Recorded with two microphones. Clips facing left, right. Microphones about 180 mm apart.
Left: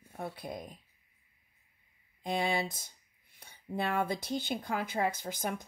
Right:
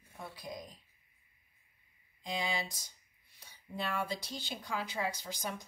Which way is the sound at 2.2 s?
55° left (ahead or behind).